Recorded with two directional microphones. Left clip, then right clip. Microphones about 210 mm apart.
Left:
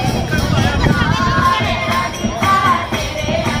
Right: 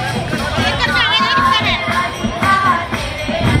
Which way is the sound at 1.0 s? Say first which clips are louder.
Right 3 dB; 30° left (ahead or behind).